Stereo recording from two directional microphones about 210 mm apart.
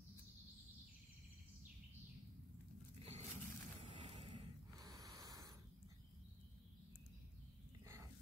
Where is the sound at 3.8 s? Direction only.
25° right (ahead or behind).